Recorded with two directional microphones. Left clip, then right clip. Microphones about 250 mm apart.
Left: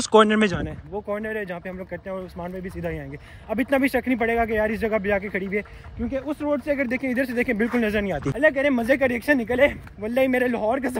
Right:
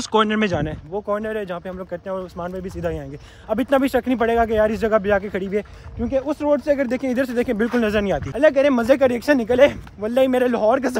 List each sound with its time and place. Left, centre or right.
0.0 s speech: centre
0.9 s speech: right